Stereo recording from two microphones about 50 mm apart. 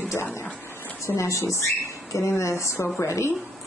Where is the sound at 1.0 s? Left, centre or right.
Left.